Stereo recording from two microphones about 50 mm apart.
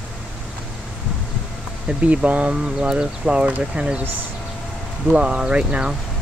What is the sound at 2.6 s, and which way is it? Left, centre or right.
Speech, centre.